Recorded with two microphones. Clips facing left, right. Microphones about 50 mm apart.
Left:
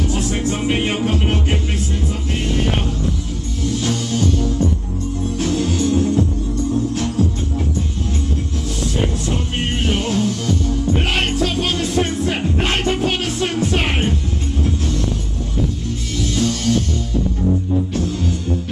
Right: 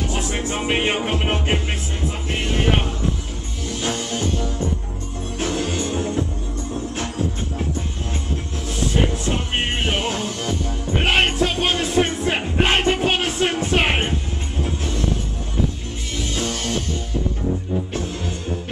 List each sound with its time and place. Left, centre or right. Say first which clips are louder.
0.1 s music: left 4 dB; right
3.8 s music: left 2 dB; right
9.2 s music: left 1 dB; right
16.2 s music: left 5 dB; right